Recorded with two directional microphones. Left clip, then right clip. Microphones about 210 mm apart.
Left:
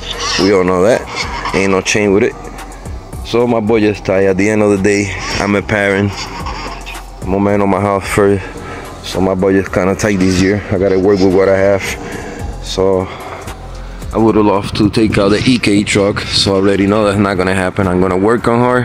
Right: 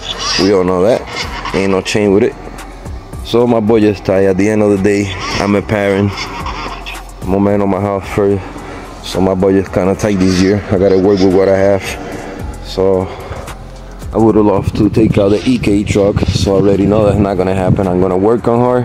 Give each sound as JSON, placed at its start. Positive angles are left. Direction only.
{"t": 0.1, "sound": "a sound", "side_deg": 5}
{"t": 0.5, "sound": "speech", "side_deg": -5}
{"t": 7.2, "sound": "speech", "side_deg": -15}
{"t": 12.7, "sound": "speech", "side_deg": -5}
{"t": 14.1, "sound": "speech", "side_deg": -10}